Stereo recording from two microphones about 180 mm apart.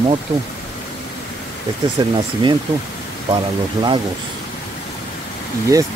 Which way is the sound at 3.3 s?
25° right (ahead or behind).